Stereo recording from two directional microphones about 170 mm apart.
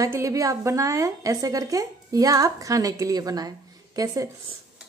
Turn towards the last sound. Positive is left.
turn(degrees=-20)  # may be behind; listen again after turning